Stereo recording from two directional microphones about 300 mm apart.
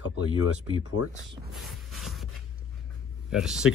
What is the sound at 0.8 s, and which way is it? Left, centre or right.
Speech, left.